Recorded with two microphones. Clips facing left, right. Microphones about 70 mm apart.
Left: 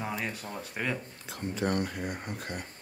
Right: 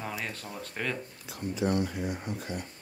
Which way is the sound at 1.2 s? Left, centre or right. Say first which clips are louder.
Even; left.